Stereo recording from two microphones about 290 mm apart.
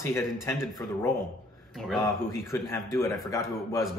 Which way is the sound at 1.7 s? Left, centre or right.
Centre.